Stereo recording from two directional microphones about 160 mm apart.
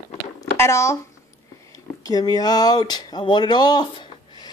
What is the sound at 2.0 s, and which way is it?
Speech, 25° left (ahead or behind).